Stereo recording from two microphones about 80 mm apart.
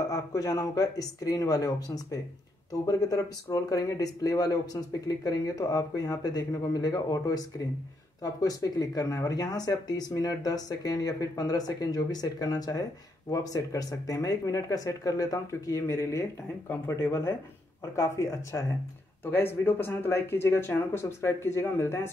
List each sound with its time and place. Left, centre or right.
0.1 s speech: left
16.6 s speech: left
17.1 s speech: left
19.2 s speech: left